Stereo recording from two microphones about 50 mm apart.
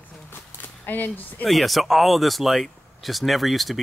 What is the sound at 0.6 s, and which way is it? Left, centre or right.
Speech, left.